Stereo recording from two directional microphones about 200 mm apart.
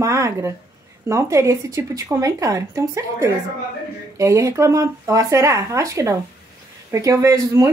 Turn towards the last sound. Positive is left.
turn(degrees=-15)  # may be behind; listen again after turning